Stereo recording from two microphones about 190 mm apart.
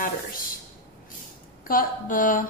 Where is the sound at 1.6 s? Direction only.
45° left (ahead or behind).